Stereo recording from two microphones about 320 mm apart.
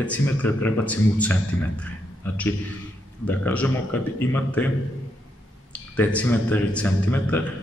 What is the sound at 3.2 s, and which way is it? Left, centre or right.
A man's voice, centre.